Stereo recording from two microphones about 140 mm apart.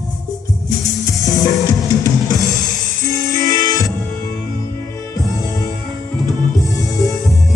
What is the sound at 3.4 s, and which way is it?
Music, 30° left (ahead or behind).